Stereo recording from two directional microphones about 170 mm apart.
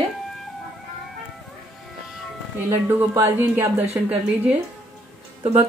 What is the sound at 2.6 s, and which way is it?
A woman's voice, 15° right (ahead or behind).